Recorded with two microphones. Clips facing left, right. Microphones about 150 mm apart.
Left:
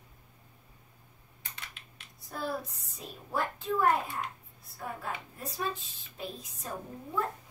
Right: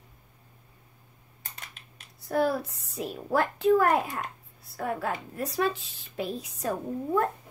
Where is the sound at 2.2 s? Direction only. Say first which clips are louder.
Right 10 dB; 75° right (ahead or behind).